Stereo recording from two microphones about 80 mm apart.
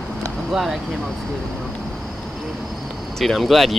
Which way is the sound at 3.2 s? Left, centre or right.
Centre.